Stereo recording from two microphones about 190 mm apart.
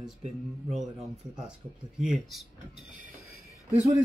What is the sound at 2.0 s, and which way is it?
Speech, centre (ahead or behind).